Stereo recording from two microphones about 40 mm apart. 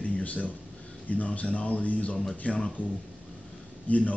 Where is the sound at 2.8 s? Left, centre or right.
Left.